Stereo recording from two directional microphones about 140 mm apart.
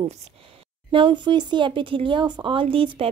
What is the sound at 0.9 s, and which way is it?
Speech, 35° right (ahead or behind).